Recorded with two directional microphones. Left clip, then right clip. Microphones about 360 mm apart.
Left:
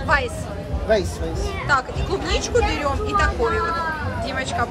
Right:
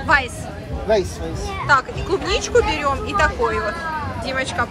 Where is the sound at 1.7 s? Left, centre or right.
Centre.